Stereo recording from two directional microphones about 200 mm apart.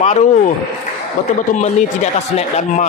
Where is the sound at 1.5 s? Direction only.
35° left (ahead or behind).